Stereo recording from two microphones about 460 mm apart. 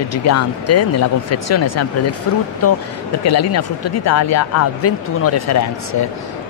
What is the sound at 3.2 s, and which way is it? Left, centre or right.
Speech, left.